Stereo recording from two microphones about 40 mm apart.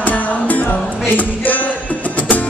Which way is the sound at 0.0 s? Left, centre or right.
Left.